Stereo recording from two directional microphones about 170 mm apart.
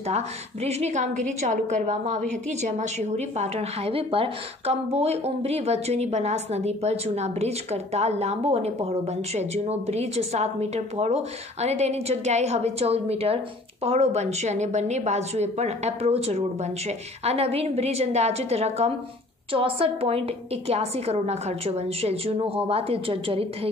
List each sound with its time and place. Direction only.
0.1 s a woman's voice: 40° right (ahead or behind)